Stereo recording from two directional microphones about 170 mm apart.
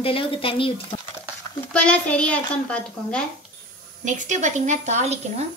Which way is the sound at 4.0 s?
45° right (ahead or behind).